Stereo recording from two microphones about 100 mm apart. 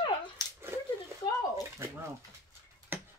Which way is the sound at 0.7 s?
25° right (ahead or behind).